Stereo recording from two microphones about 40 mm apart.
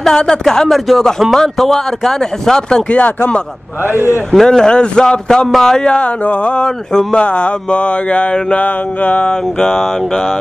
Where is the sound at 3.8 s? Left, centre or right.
Right.